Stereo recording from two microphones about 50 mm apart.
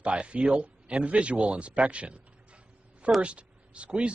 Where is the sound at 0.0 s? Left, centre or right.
Right.